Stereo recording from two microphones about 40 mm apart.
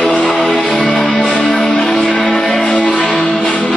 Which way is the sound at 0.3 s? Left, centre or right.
Centre.